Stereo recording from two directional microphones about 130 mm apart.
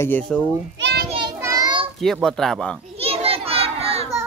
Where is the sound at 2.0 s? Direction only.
Centre (ahead or behind).